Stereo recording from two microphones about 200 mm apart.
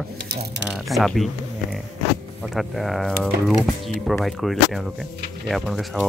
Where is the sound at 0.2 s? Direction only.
55° right (ahead or behind).